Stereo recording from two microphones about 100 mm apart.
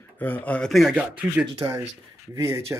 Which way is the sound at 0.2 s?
15° left (ahead or behind).